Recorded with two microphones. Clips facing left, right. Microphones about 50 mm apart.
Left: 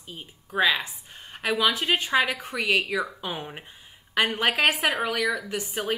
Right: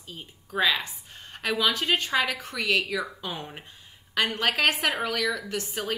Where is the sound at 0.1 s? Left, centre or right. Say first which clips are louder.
Left 1 dB; centre.